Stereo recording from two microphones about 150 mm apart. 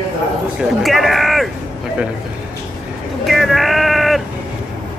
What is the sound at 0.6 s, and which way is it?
Speech, centre (ahead or behind).